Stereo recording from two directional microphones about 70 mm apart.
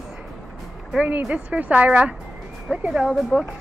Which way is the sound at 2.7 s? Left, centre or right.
Centre.